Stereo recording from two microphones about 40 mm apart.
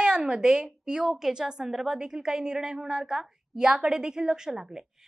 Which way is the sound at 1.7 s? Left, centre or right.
Centre.